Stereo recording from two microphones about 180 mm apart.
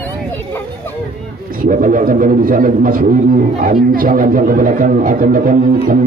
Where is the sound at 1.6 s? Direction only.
50° right (ahead or behind).